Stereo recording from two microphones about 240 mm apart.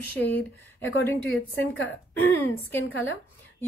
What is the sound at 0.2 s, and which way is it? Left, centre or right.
Speech, centre.